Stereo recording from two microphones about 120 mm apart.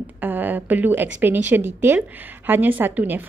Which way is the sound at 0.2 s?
15° right (ahead or behind).